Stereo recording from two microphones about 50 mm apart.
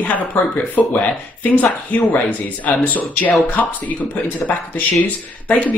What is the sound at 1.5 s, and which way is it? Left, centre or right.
Speech, left.